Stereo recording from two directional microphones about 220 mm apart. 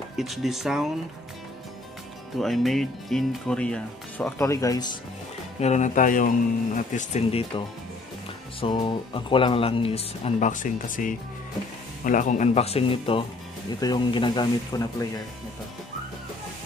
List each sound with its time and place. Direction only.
0.2 s speech: centre (ahead or behind)
2.3 s speech: centre (ahead or behind); by 4.9 s 15° left (ahead or behind)
5.6 s speech: 30° left (ahead or behind); by 15.0 s 15° left (ahead or behind)